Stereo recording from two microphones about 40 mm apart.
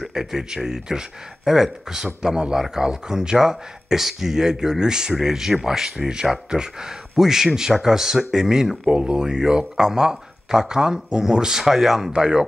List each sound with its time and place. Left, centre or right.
0.0 s speech: centre
8.9 s speech: right; by 12.1 s centre
12.2 s speech: centre